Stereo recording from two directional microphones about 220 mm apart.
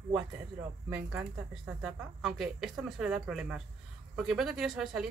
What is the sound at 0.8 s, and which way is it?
Speech, 5° right (ahead or behind).